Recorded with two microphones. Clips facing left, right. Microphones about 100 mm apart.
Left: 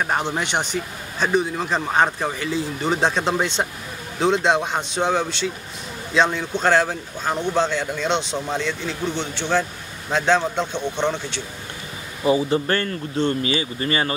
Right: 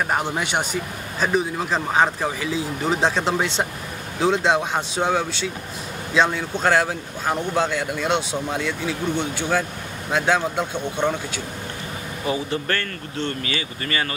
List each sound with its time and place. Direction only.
0.1 s a man's voice: 5° right (ahead or behind)
12.3 s speech: 25° left (ahead or behind)